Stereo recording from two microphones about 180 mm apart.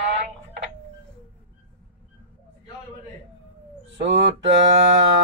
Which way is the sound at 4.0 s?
85° right.